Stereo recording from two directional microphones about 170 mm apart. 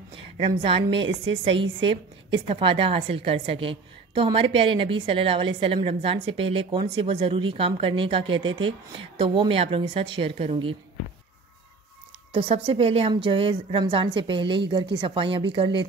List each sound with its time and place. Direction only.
0.6 s a woman's voice: 35° right (ahead or behind)
12.3 s a woman's voice: 35° right (ahead or behind)